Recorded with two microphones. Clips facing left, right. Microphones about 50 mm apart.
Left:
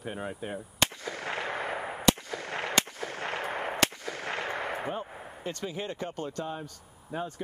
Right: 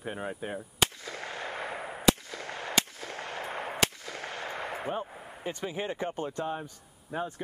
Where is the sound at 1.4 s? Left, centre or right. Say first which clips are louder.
Left 3 dB; left.